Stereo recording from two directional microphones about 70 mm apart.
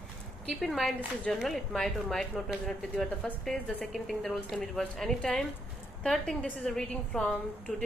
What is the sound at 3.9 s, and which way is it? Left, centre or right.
A woman's voice, centre.